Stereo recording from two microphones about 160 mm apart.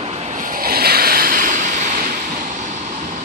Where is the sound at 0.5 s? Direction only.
70° right (ahead or behind); by 2.0 s 50° right (ahead or behind).